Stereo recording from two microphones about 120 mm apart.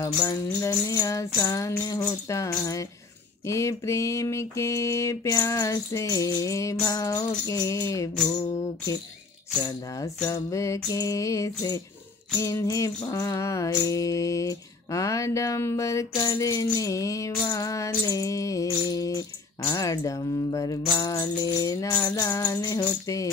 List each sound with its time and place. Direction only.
0.0 s mantra: 25° left (ahead or behind)
10.2 s mantra: 25° left (ahead or behind)